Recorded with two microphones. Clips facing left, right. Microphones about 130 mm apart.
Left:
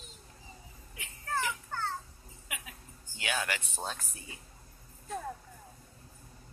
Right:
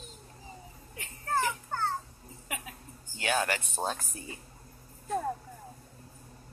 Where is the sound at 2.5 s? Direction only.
40° right (ahead or behind).